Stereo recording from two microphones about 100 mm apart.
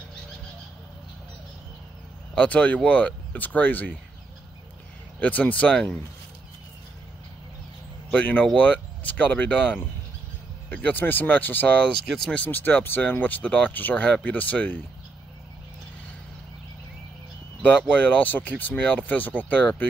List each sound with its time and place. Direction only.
2.3 s speech: 15° left (ahead or behind)
5.2 s speech: 15° left (ahead or behind)
8.1 s speech: 15° left (ahead or behind)
17.6 s speech: 15° left (ahead or behind)